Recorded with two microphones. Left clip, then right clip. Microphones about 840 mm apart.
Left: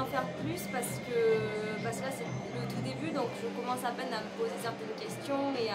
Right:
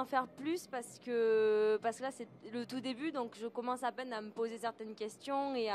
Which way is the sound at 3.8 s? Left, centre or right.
Right.